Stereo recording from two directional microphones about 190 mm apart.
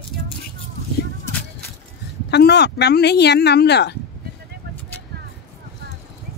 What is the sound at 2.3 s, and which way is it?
Speech, 60° left (ahead or behind).